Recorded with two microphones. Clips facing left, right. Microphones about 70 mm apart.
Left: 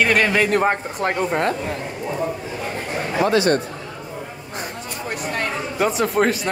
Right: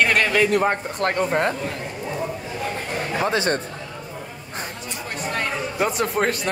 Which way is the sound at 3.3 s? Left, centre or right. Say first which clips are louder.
Left 6 dB; right.